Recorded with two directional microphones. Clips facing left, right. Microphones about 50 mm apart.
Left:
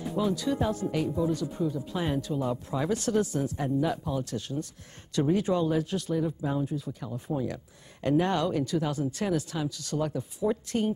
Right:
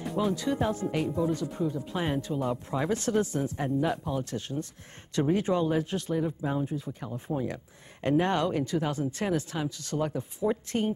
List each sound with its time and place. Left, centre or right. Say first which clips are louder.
0.2 s speech: even; right
0.9 s speech: even; right
1.9 s speech: even; right
4.2 s speech: even; right